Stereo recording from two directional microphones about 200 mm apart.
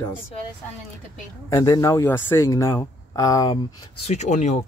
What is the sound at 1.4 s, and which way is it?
Speech, 15° left (ahead or behind).